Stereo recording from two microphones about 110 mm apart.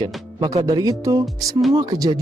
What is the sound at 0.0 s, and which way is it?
Speech, 35° right (ahead or behind).